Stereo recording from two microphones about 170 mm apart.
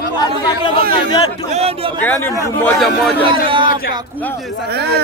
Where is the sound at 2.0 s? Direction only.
10° left (ahead or behind).